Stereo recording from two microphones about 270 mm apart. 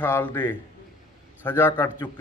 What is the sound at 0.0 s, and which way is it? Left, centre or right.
A man's voice, centre.